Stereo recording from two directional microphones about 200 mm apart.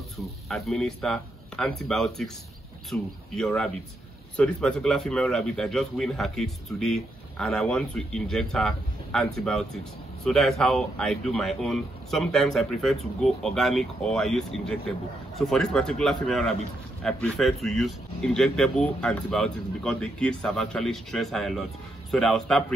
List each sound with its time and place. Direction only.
0.2 s speech: centre (ahead or behind)